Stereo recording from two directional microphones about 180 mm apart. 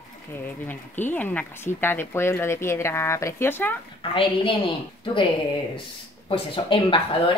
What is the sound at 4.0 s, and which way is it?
A woman's voice, 30° left (ahead or behind).